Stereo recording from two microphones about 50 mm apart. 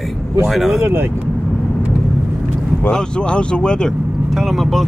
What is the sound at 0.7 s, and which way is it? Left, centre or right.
Speech, right.